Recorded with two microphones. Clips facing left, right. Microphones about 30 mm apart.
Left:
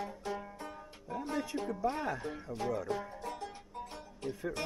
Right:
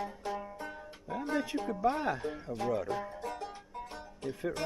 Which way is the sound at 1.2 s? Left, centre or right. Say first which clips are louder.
Right 3 dB; centre.